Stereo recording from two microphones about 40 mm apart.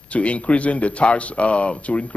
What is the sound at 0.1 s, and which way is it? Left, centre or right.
Speech, left.